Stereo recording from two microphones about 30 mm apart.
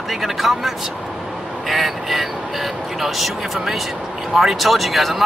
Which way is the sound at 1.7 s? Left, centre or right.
Centre.